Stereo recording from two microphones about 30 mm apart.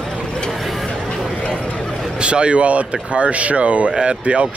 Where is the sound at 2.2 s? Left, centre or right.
Right.